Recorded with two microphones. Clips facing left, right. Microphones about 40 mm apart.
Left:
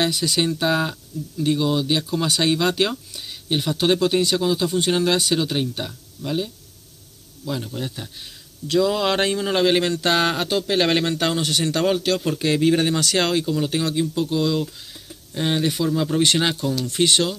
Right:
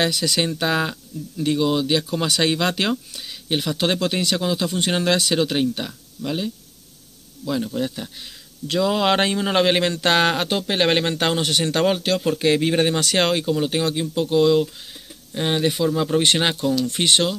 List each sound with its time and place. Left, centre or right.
0.0 s speech: right
3.1 s speech: right
7.6 s speech: right
10.6 s speech: right
11.8 s speech: right
15.3 s speech: centre
16.2 s speech: right